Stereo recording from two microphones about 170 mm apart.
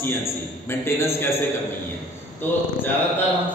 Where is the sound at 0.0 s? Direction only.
15° left (ahead or behind).